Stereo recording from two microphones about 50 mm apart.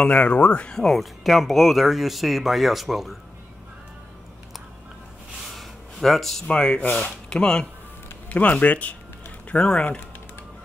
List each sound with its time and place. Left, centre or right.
0.0 s speech: left
0.7 s speech: centre
5.5 s a sound: centre
6.4 s speech: centre
8.3 s speech: left